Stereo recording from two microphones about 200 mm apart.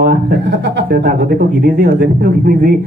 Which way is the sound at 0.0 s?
50° right (ahead or behind).